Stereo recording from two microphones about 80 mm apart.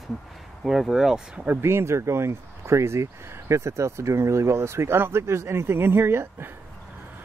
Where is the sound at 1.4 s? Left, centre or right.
Right.